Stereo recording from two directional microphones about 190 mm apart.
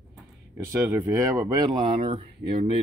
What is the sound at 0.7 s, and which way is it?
Speech, 15° right (ahead or behind).